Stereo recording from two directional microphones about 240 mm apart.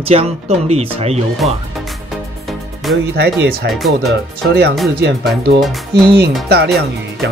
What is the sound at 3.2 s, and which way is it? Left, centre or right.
Speech, right.